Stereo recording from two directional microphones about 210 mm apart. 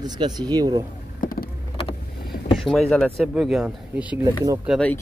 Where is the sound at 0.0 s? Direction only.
20° right (ahead or behind).